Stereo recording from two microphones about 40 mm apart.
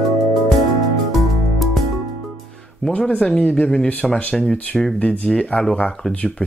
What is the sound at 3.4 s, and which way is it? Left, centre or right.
Speech, left.